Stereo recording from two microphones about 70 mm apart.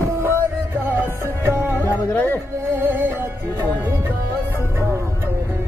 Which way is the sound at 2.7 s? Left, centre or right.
Right.